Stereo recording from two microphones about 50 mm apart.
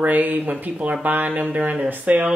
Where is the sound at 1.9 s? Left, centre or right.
Right.